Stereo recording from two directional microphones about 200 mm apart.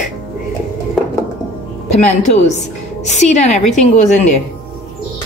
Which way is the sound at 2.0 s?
35° left (ahead or behind).